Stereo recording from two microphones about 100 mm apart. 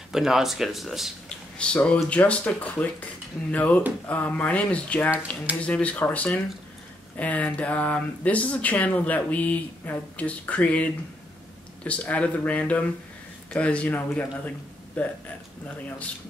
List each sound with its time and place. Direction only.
0.1 s speech: 5° right (ahead or behind)
1.6 s speech: 10° left (ahead or behind)